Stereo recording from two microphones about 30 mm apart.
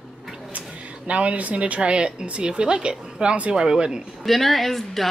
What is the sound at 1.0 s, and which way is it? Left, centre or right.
A woman's voice, right.